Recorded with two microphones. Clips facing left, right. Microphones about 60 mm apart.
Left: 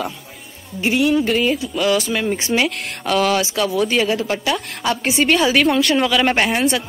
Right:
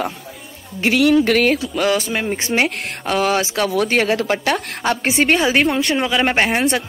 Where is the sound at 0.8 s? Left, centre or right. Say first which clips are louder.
Right 2 dB; right.